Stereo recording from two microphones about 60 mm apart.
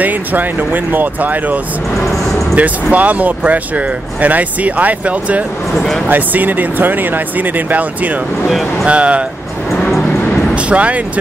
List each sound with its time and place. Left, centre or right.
0.0 s speech: right
5.8 s speech: centre
6.0 s speech: right
8.5 s speech: centre
8.8 s speech: right
10.5 s vehicle: right